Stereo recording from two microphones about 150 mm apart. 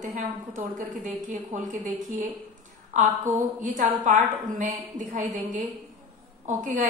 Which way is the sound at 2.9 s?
55° right (ahead or behind).